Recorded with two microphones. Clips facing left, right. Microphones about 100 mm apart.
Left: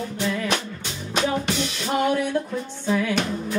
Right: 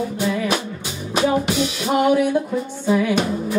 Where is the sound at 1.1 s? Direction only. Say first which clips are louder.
Right 5 dB; 10° right (ahead or behind).